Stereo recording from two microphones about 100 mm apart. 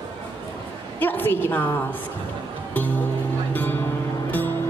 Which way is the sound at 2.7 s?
20° left (ahead or behind).